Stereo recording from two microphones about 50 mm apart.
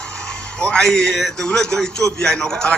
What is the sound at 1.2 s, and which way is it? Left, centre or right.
A man's voice, centre.